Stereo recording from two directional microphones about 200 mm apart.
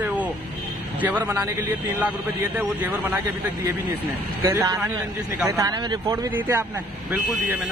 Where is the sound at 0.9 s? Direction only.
10° right (ahead or behind).